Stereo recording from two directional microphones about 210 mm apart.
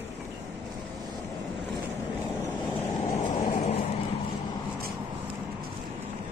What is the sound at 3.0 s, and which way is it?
Vehicle, 30° left (ahead or behind).